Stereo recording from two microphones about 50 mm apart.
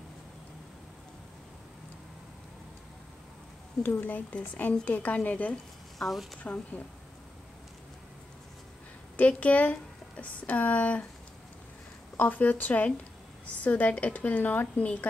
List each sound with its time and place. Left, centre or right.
4.0 s a woman's voice: left
5.5 s speech: centre
6.4 s a woman's voice: left
9.1 s speech: left
12.2 s a woman's voice: left